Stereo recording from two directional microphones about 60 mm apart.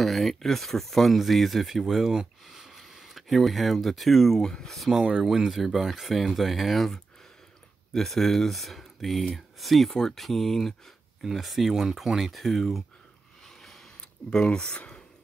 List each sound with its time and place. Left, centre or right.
0.0 s speech: centre
4.9 s speech: centre
5.2 s speech: centre
14.3 s speech: centre